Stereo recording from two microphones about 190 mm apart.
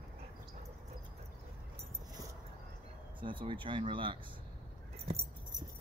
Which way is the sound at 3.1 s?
25° right (ahead or behind).